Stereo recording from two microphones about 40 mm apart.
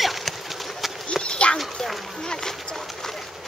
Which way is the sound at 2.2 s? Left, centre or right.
Centre.